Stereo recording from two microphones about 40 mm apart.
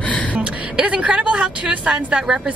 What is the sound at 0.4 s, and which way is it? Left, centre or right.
A woman's voice, right.